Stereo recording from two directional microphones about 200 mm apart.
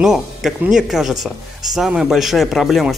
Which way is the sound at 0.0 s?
Centre (ahead or behind).